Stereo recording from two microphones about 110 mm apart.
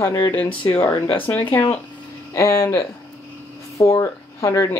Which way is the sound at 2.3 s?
30° left (ahead or behind).